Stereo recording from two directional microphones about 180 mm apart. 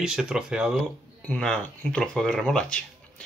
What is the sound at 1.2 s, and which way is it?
Speech, 5° left (ahead or behind).